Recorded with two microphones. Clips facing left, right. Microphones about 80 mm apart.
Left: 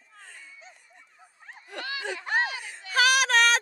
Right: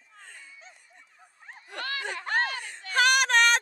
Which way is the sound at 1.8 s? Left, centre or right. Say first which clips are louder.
Even; right.